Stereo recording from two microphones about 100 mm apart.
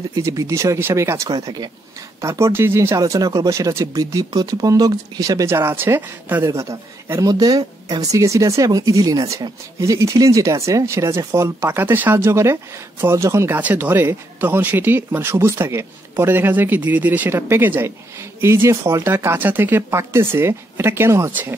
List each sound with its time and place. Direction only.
0.1 s speech: 35° right (ahead or behind)
1.3 s speech: 40° right (ahead or behind)
2.2 s speech: 30° right (ahead or behind)
3.0 s speech: 40° right (ahead or behind); by 6.5 s 20° right (ahead or behind)
6.5 s speech: 30° right (ahead or behind)
13.6 s speech: 20° right (ahead or behind)